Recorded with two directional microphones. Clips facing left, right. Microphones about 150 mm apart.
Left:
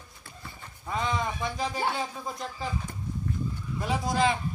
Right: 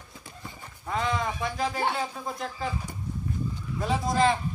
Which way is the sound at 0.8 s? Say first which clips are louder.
Right 1 dB; centre (ahead or behind).